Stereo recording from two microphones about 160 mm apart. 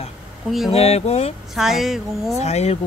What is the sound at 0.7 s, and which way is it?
Speech, 40° left (ahead or behind).